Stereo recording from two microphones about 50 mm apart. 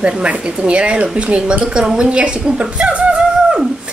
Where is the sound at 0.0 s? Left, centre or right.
Right.